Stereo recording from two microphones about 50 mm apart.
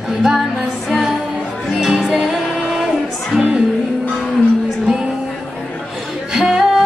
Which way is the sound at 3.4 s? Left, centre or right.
Centre.